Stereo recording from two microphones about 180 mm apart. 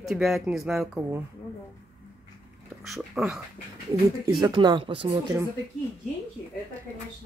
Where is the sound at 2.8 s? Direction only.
Centre (ahead or behind).